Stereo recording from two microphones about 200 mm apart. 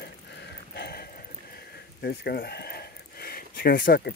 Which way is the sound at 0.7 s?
55° left (ahead or behind).